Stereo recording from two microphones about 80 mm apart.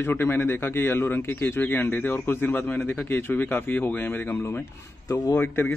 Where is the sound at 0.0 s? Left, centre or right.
Left.